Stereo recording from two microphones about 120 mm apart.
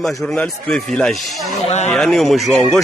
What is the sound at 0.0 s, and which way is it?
A man's voice, 5° left (ahead or behind).